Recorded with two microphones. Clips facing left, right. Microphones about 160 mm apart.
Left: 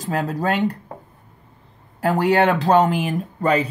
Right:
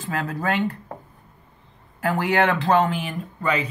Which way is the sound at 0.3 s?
40° left (ahead or behind).